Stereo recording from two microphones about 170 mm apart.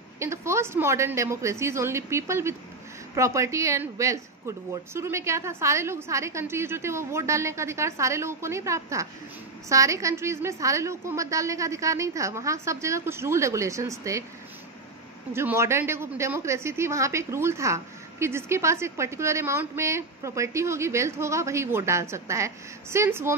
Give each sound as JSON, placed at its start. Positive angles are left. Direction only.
{"t": 0.2, "sound": "a woman's voice", "side_deg": -15}
{"t": 15.3, "sound": "a woman's voice", "side_deg": -15}